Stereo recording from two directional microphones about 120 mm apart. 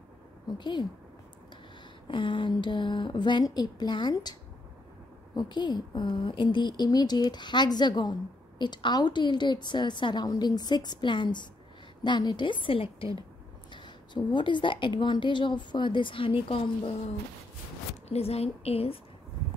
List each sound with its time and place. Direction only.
0.6 s a woman's voice: 40° left (ahead or behind)
2.0 s a woman's voice: 45° left (ahead or behind)
18.0 s a woman's voice: 60° left (ahead or behind)